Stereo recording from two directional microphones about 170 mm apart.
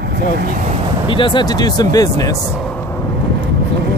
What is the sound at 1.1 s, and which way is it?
Speech, 30° left (ahead or behind).